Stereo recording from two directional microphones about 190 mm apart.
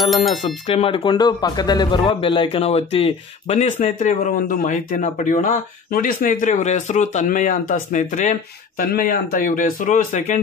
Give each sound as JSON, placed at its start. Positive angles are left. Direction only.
{"t": 0.0, "sound": "speech", "side_deg": 0}
{"t": 0.7, "sound": "speech", "side_deg": 30}